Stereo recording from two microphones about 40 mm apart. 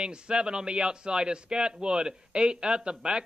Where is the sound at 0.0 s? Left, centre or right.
Right.